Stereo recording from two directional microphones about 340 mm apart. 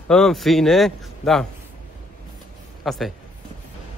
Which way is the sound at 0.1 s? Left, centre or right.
Centre.